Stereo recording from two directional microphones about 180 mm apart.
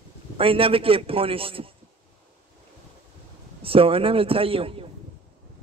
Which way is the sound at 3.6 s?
30° right (ahead or behind).